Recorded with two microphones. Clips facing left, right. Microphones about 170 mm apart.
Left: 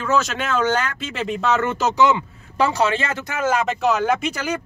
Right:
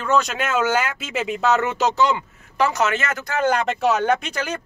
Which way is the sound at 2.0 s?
25° left (ahead or behind).